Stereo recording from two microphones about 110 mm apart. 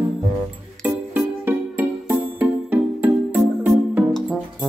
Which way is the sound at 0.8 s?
20° right (ahead or behind).